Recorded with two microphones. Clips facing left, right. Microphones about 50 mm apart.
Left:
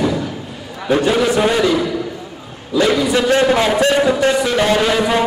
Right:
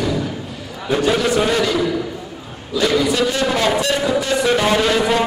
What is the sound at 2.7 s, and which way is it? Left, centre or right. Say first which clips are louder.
Speech: left 3 dB; left.